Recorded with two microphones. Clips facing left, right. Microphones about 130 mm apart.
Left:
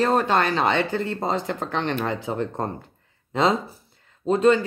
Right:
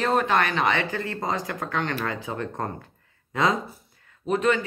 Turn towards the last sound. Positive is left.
turn(degrees=35)  # may be behind; listen again after turning